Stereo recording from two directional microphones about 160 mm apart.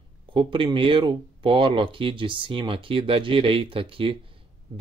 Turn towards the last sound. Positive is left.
turn(degrees=-35)  # may be behind; listen again after turning